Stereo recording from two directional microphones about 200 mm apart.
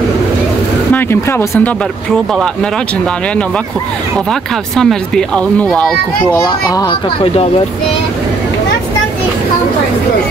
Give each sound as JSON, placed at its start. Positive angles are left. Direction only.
{"t": 0.9, "sound": "speech", "side_deg": 10}
{"t": 4.3, "sound": "speech", "side_deg": 5}
{"t": 6.4, "sound": "speech", "side_deg": 20}